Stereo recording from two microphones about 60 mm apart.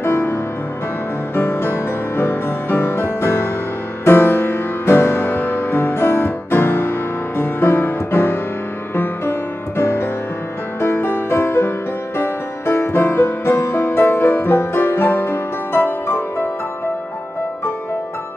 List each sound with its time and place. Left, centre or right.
0.0 s music: left